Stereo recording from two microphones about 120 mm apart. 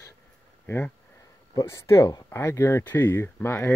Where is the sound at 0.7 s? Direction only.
20° left (ahead or behind).